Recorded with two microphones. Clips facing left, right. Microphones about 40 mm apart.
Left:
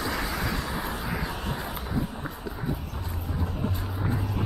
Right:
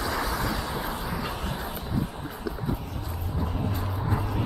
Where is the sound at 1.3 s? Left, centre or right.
Centre.